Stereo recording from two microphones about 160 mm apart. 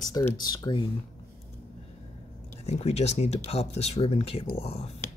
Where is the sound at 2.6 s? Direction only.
40° left (ahead or behind).